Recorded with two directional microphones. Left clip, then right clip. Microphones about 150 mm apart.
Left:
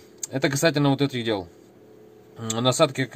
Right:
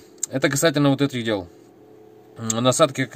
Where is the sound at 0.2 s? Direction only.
25° right (ahead or behind).